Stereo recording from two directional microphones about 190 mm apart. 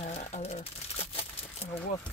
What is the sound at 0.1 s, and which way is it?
Crumpling, 35° left (ahead or behind).